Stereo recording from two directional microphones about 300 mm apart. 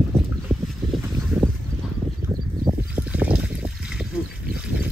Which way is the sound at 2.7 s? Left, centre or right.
Centre.